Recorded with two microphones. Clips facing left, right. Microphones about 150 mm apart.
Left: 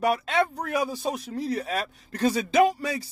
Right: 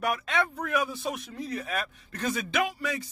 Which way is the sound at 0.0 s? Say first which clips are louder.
Left 5 dB; 30° left (ahead or behind).